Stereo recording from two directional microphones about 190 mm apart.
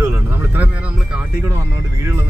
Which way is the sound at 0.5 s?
10° right (ahead or behind).